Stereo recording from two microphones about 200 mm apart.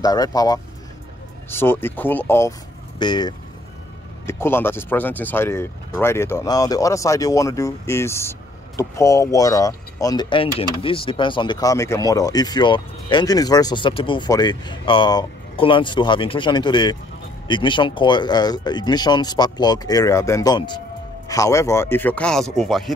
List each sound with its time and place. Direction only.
0.0 s speech: 20° left (ahead or behind)
4.3 s speech: 10° left (ahead or behind)